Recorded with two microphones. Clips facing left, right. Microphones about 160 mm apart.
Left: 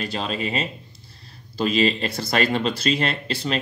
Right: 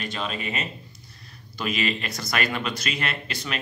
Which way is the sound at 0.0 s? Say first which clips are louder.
Left 4 dB; 35° left (ahead or behind).